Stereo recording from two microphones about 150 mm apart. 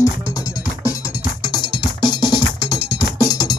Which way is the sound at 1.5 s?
30° left (ahead or behind).